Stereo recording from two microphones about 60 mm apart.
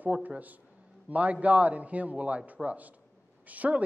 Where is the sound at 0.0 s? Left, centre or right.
Right.